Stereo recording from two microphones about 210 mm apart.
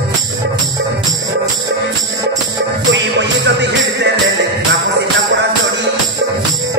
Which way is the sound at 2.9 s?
55° right (ahead or behind).